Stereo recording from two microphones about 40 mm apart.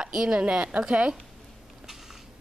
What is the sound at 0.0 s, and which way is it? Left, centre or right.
A woman's voice, centre.